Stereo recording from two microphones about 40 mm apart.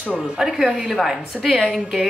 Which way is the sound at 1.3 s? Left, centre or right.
Centre.